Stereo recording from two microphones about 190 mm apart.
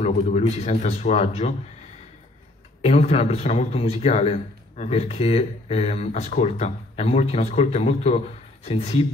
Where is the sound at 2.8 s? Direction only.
35° left (ahead or behind).